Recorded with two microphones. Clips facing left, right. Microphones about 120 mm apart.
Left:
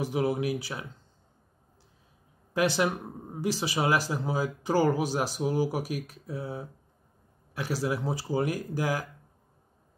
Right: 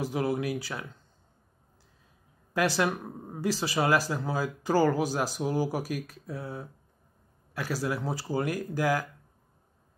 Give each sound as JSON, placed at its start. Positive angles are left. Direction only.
{"t": 0.0, "sound": "speech", "side_deg": 20}
{"t": 2.5, "sound": "speech", "side_deg": 20}